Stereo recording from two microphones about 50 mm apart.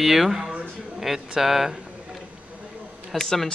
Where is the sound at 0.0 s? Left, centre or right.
Centre.